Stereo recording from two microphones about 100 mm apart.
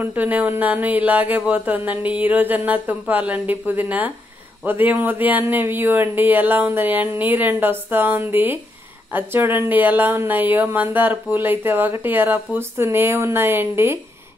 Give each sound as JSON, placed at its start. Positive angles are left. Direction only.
{"t": 0.0, "sound": "speech", "side_deg": -15}